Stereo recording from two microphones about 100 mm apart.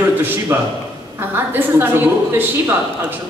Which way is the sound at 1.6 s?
20° right (ahead or behind).